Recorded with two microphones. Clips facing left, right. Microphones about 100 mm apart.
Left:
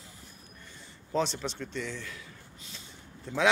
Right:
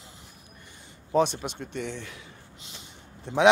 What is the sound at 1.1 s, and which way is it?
Speech, 55° right (ahead or behind).